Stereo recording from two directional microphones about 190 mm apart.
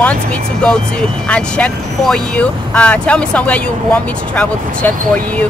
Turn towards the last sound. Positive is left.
turn(degrees=5)  # may be behind; listen again after turning